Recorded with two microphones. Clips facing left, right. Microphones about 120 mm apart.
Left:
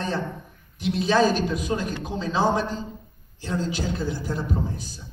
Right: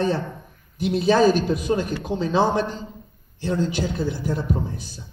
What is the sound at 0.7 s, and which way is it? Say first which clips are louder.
A man's voice: right 3 dB; 55° right (ahead or behind).